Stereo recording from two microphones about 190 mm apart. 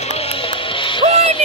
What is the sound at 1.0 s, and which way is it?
Music, 35° right (ahead or behind).